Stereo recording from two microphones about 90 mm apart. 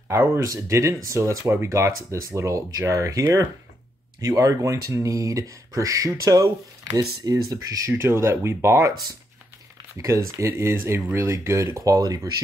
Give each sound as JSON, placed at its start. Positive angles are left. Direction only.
{"t": 0.1, "sound": "speech", "side_deg": -30}
{"t": 7.9, "sound": "speech", "side_deg": -30}
{"t": 9.9, "sound": "speech", "side_deg": -35}